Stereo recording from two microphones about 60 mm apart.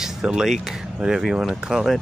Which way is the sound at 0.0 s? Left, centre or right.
Centre.